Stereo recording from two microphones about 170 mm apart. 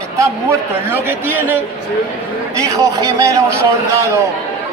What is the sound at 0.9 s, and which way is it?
A man's voice, 10° right (ahead or behind).